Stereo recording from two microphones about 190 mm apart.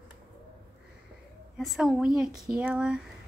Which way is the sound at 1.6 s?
Centre (ahead or behind).